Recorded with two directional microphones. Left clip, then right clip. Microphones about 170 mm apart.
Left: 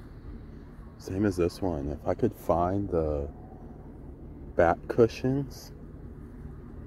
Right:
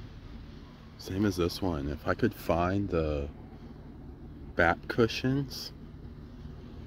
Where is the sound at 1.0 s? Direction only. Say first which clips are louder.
Left 3 dB; 10° right (ahead or behind).